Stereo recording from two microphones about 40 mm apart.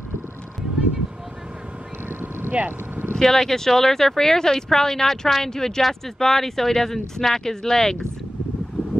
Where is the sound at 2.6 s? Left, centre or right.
Right.